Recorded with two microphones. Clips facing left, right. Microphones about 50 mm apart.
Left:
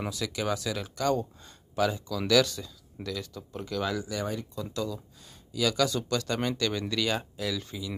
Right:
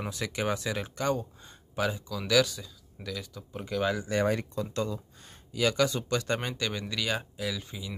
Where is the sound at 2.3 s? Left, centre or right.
Centre; by 4.0 s right.